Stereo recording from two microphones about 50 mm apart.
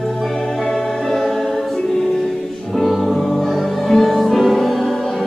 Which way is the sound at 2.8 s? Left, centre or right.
Centre.